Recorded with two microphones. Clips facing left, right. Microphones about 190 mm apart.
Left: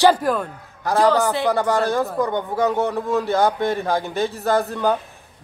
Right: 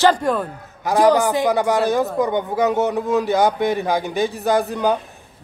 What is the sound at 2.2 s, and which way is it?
A man's voice, 15° right (ahead or behind).